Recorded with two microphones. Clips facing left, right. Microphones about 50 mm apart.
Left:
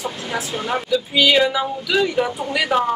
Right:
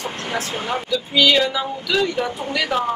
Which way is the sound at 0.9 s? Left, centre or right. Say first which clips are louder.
Left 1 dB; centre.